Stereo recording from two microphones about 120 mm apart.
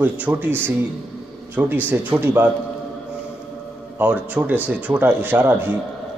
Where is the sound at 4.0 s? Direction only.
15° right (ahead or behind).